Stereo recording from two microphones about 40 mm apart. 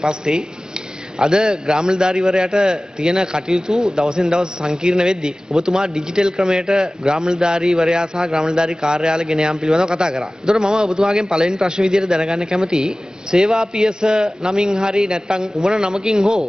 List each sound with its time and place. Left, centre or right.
0.0 s a man's voice: centre